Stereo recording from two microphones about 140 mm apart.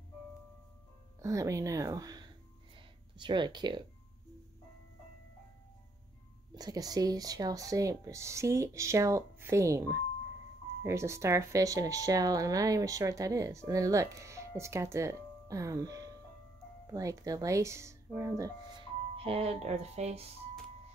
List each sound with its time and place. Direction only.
1.2 s speech: 20° right (ahead or behind)
6.5 s speech: 25° right (ahead or behind)
19.1 s speech: 45° right (ahead or behind)